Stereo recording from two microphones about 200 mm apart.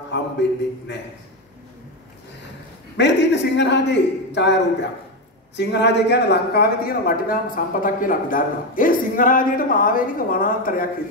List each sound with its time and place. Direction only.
0.1 s a man's voice: 60° left (ahead or behind)
3.0 s a man's voice: 60° left (ahead or behind)
5.6 s speech: 60° left (ahead or behind)